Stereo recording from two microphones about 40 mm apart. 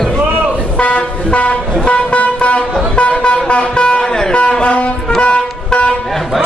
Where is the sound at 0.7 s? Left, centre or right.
Left.